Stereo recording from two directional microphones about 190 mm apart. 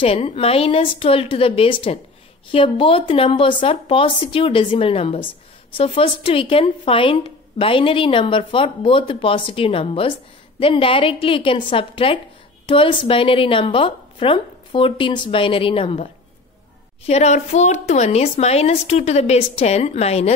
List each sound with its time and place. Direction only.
0.0 s a woman's voice: 30° left (ahead or behind)